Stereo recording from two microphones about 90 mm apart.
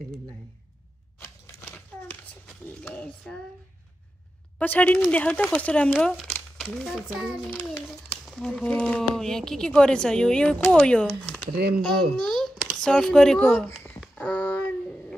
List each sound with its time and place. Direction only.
1.2 s a sound: 15° left (ahead or behind)
4.6 s speech: 15° left (ahead or behind)
6.3 s speech: 5° left (ahead or behind)
7.5 s a child's voice: 15° left (ahead or behind)
8.3 s a child's voice: 5° left (ahead or behind)
13.6 s a child's voice: 20° left (ahead or behind)